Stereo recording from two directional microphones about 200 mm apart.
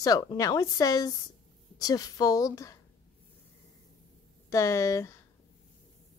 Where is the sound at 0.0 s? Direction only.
20° left (ahead or behind).